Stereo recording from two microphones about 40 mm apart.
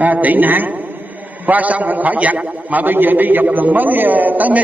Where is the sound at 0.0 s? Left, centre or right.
Right.